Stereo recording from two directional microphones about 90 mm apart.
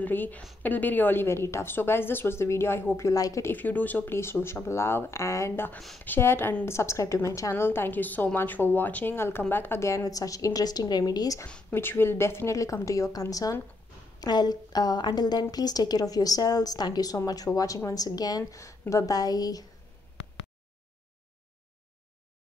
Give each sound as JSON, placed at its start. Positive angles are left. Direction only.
{"t": 0.0, "sound": "a woman's voice", "side_deg": 20}
{"t": 3.1, "sound": "a woman's voice", "side_deg": 40}
{"t": 3.5, "sound": "a woman's voice", "side_deg": 20}
{"t": 5.9, "sound": "a woman's voice", "side_deg": 20}
{"t": 11.7, "sound": "a woman's voice", "side_deg": 25}